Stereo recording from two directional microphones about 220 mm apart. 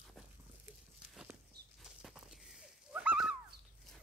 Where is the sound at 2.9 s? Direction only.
5° right (ahead or behind).